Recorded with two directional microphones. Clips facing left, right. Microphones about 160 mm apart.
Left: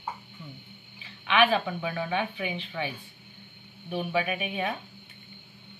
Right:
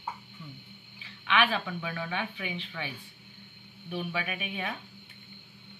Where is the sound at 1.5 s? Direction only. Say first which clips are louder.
Left 5 dB; 30° left (ahead or behind).